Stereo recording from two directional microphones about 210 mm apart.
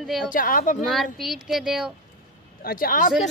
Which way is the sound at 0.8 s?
Centre (ahead or behind).